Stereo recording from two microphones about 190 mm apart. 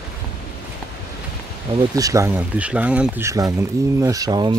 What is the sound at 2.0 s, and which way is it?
Speech, 15° right (ahead or behind).